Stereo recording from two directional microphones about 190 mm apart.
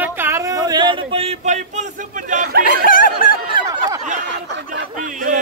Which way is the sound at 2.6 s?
45° left (ahead or behind).